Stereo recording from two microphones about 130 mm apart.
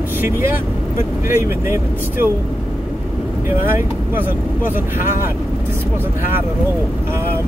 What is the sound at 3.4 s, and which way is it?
Speech, 15° right (ahead or behind).